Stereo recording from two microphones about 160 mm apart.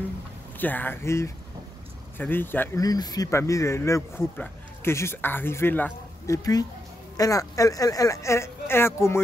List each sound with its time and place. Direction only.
0.6 s speech: 10° left (ahead or behind)
2.8 s speech: 25° left (ahead or behind)